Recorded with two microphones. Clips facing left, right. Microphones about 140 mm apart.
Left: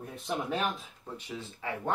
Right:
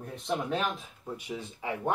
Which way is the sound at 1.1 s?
15° right (ahead or behind).